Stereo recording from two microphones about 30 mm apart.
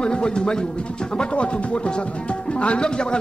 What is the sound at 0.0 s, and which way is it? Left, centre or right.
Speech, left.